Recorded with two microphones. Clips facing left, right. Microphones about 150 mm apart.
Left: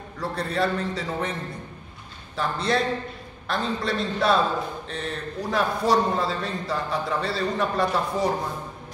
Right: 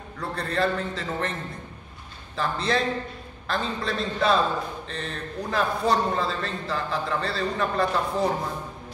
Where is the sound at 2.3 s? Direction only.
Centre (ahead or behind).